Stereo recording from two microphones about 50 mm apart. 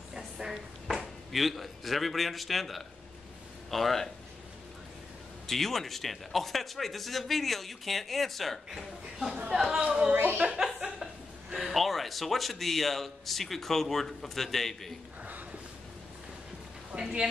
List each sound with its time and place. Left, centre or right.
0.1 s a man's voice: centre
5.5 s a man's voice: centre
8.6 s speech: centre
10.6 s chuckle: centre
11.5 s a man's voice: centre
16.9 s speech: right